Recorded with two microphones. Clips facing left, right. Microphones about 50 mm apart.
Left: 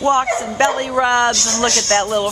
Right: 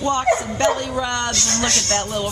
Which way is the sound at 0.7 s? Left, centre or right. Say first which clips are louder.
Left 7 dB; left.